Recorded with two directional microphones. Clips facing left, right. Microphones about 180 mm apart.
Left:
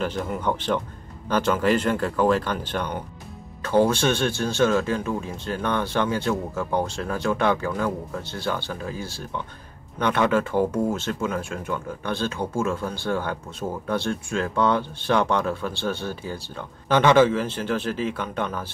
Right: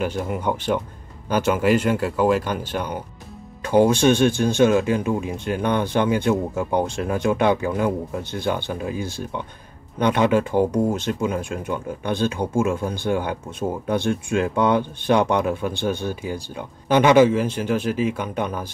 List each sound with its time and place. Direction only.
0.0 s speech: 10° right (ahead or behind)